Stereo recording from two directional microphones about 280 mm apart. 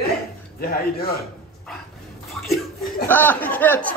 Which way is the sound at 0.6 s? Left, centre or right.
Left.